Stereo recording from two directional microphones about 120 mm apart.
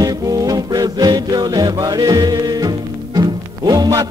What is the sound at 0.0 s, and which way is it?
Music, 30° right (ahead or behind).